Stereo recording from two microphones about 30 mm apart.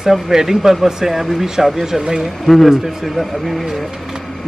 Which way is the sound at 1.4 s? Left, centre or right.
Centre.